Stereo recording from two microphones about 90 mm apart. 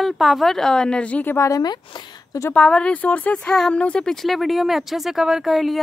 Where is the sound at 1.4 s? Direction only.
35° left (ahead or behind).